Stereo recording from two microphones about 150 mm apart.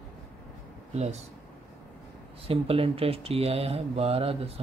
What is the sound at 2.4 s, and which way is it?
Speech, 40° right (ahead or behind).